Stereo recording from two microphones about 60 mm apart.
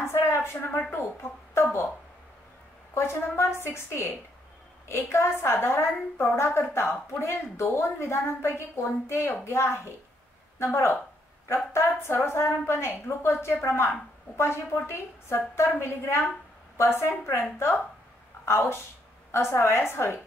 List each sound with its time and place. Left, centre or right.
0.0 s a sound: left
1.5 s speech: left
2.9 s a woman's voice: left